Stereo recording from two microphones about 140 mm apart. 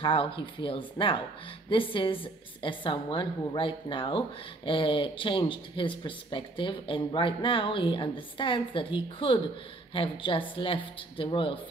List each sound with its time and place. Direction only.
0.0 s speech: 40° left (ahead or behind)